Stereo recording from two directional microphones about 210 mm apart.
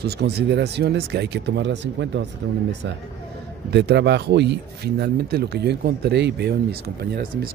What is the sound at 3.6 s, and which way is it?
Speech, 55° right (ahead or behind).